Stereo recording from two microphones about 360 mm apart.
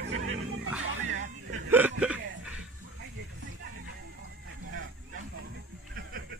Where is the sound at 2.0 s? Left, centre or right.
Centre.